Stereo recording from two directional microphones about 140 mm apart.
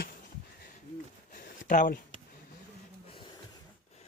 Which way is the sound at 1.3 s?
70° left (ahead or behind).